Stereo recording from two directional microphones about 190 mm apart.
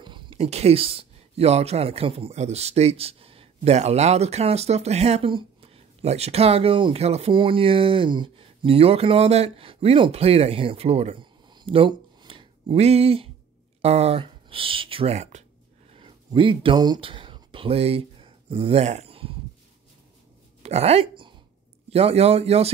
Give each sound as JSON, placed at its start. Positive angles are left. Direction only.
{"t": 0.0, "sound": "speech", "side_deg": -25}
{"t": 20.6, "sound": "speech", "side_deg": -35}